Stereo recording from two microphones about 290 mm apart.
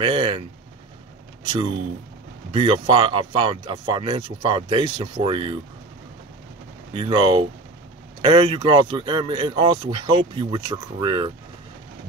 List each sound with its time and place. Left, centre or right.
0.0 s speech: centre
6.9 s speech: centre